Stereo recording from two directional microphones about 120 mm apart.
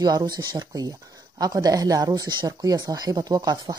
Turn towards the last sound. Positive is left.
turn(degrees=-30)  # may be behind; listen again after turning